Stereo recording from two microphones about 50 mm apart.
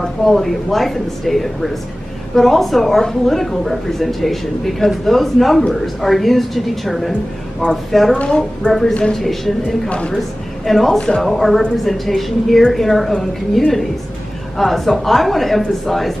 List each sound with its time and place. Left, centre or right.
0.0 s a woman's voice: centre
8.3 s a woman's voice: centre
9.8 s speech: centre
10.1 s a woman's voice: centre